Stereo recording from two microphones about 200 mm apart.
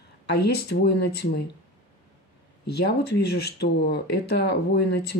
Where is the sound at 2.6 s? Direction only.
55° left (ahead or behind).